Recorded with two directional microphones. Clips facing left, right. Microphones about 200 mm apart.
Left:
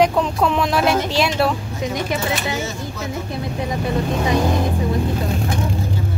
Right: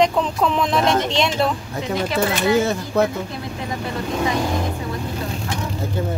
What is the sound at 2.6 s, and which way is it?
Speech, 60° right (ahead or behind).